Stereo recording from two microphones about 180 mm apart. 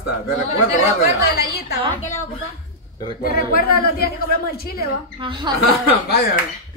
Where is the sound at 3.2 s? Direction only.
55° left (ahead or behind).